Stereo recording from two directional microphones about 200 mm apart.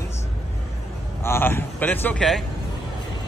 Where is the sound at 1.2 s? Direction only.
10° left (ahead or behind).